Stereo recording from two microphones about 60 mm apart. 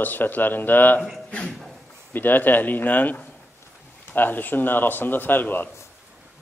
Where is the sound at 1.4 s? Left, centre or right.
Centre.